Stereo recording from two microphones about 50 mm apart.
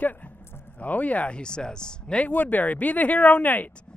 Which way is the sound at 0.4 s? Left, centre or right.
Left.